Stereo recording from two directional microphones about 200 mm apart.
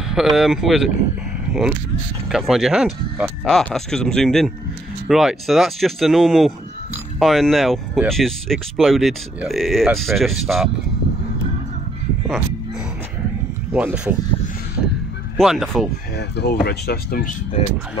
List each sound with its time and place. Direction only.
0.1 s speech: centre (ahead or behind)
13.7 s speech: 5° right (ahead or behind)
15.3 s speech: centre (ahead or behind)
16.2 s speech: 55° left (ahead or behind)